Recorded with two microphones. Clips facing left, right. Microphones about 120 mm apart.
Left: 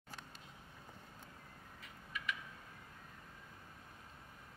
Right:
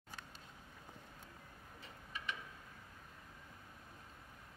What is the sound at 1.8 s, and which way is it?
Tick-tock, 30° right (ahead or behind).